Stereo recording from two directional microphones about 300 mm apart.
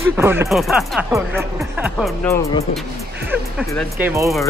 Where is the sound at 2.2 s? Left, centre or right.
Centre.